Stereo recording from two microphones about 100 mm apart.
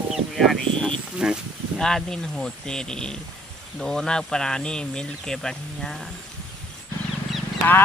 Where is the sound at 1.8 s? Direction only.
5° left (ahead or behind).